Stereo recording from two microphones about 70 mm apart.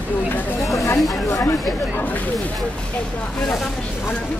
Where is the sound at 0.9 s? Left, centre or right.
Centre.